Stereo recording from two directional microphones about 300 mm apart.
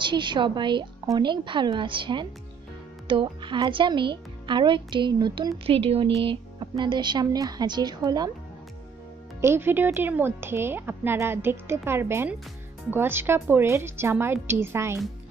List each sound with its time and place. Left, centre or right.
0.0 s speech: centre
9.4 s speech: centre